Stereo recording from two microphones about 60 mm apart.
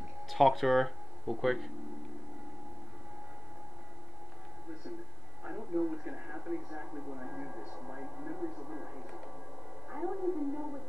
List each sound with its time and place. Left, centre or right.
0.3 s speech: centre
5.4 s speech: centre